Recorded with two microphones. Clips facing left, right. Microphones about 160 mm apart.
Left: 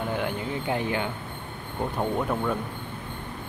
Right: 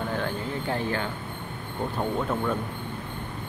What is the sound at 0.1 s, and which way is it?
Speech, 15° left (ahead or behind).